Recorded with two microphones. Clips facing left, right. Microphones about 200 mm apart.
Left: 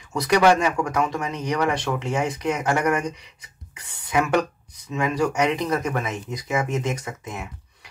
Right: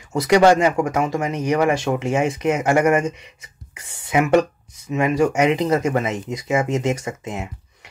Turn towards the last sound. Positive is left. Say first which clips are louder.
# right 5 dB
turn(degrees=-25)  # may be behind; listen again after turning